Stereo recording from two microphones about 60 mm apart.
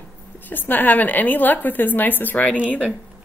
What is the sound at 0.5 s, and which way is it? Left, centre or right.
A woman's voice, left.